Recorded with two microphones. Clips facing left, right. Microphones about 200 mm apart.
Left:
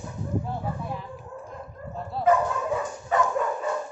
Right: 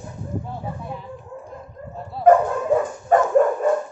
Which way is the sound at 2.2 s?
55° right (ahead or behind).